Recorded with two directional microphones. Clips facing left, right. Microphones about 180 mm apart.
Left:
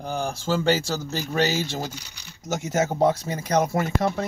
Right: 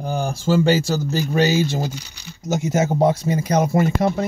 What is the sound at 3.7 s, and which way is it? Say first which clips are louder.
Speech: right 5 dB; 20° right (ahead or behind).